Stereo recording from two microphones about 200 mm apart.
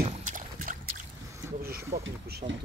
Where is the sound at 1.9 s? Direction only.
50° right (ahead or behind).